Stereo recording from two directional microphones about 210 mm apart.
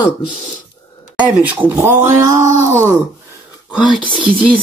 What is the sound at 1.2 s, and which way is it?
Speech, 5° right (ahead or behind).